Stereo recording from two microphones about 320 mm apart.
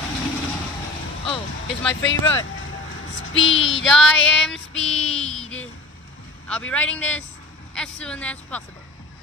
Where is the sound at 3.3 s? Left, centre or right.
Left.